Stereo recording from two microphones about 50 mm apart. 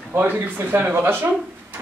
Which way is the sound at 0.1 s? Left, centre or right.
Right.